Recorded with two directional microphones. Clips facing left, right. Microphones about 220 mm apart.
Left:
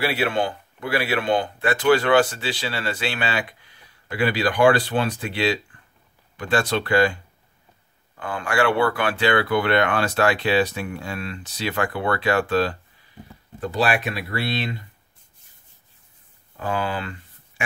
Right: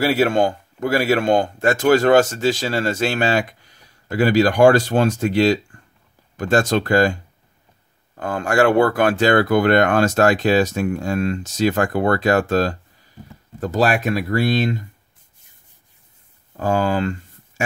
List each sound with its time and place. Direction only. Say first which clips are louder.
0.0 s speech: right 6 dB; 45° right (ahead or behind)
8.2 s speech: right 5 dB; 45° right (ahead or behind)
16.5 s speech: right 7 dB; 45° right (ahead or behind)